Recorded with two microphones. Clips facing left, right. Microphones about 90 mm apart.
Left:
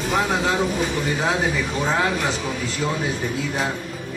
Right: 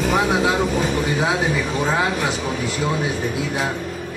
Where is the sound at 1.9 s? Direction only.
15° right (ahead or behind).